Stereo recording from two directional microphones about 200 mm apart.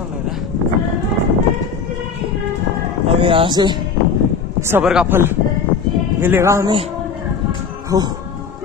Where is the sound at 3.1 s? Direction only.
25° right (ahead or behind).